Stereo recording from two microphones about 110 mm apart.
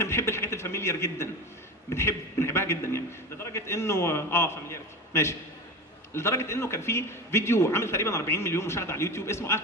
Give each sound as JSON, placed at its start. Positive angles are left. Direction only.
{"t": 0.0, "sound": "a man's voice", "side_deg": 25}